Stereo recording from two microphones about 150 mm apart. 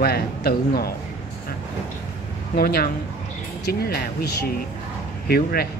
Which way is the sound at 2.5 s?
90° left.